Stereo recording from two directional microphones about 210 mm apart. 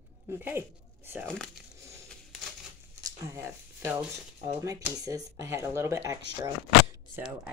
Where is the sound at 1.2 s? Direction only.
5° left (ahead or behind).